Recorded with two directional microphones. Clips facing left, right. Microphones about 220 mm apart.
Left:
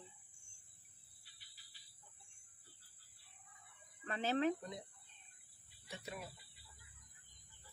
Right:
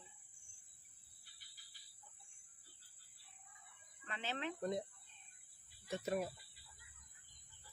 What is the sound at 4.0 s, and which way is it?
Speech, 40° left (ahead or behind).